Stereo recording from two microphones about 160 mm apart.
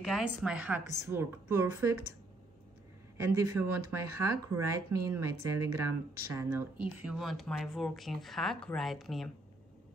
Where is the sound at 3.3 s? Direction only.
15° right (ahead or behind); by 9.3 s centre (ahead or behind).